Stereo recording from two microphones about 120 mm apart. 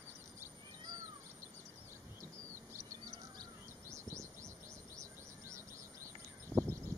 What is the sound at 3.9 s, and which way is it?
Chirp, 25° right (ahead or behind).